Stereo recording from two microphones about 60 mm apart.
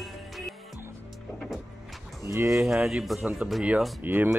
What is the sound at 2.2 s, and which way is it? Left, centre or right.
Speech, right.